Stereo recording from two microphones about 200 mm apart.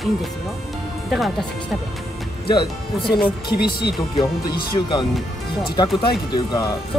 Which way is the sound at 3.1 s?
50° left (ahead or behind).